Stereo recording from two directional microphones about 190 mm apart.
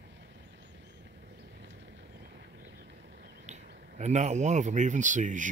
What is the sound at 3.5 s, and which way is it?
Speech, 40° right (ahead or behind).